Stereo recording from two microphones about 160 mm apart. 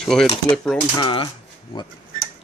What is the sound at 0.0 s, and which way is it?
Speech, centre (ahead or behind).